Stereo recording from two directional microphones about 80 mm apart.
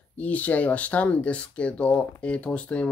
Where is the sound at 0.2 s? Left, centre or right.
Centre.